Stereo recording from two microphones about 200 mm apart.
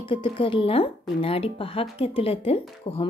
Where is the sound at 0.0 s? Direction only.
25° left (ahead or behind).